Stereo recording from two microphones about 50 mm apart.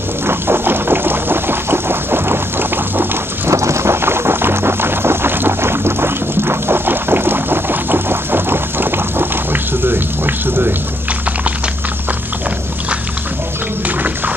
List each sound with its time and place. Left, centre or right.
0.2 s music: right
3.4 s boat: right
13.8 s a sound: right